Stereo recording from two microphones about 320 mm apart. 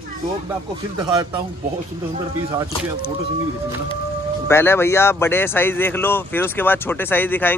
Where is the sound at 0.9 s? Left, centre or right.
Centre.